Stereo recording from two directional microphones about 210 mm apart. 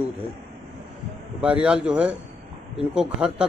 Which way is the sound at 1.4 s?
5° right (ahead or behind).